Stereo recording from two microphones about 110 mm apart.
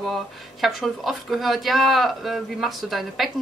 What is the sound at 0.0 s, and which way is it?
A woman's voice, centre (ahead or behind).